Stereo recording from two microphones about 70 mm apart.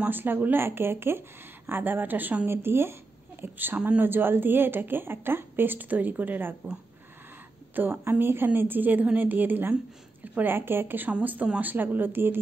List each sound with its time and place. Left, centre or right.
0.0 s a woman's voice: right
7.7 s a woman's voice: right
11.1 s a woman's voice: centre